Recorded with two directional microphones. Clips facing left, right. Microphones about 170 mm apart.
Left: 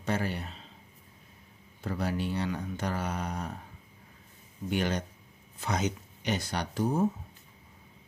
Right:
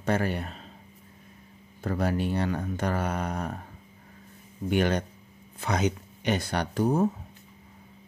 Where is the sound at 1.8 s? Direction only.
50° right (ahead or behind).